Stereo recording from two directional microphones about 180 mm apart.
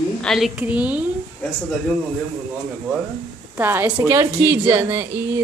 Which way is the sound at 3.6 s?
10° right (ahead or behind).